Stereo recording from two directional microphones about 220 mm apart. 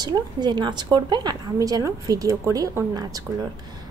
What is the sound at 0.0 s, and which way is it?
A woman's voice, 20° right (ahead or behind).